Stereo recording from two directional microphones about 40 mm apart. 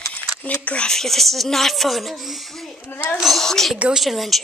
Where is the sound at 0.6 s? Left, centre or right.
Left.